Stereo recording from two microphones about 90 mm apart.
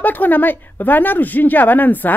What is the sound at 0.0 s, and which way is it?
Speech, 20° left (ahead or behind).